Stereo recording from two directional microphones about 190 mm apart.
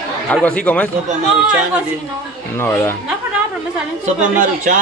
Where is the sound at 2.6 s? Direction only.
10° left (ahead or behind).